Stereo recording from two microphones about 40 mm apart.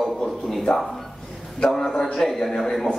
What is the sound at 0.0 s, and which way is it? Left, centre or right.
Speech, centre.